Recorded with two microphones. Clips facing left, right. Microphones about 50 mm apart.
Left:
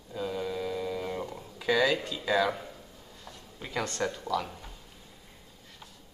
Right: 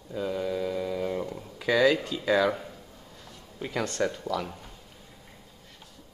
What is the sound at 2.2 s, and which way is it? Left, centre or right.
Speech, centre.